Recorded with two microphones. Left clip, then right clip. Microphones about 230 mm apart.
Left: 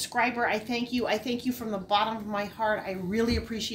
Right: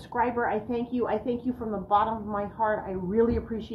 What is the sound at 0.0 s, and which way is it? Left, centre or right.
A woman's voice, left.